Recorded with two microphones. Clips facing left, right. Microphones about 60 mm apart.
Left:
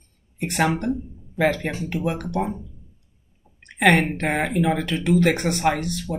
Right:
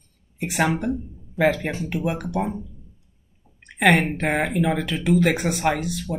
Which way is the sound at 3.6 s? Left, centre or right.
Centre.